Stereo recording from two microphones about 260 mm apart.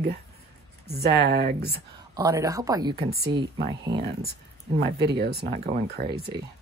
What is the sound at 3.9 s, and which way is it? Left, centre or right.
Speech, right.